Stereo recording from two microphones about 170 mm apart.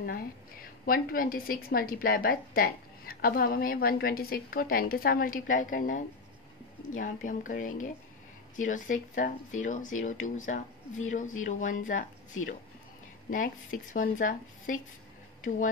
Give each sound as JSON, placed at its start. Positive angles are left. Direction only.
{"t": 0.8, "sound": "a woman's voice", "side_deg": 60}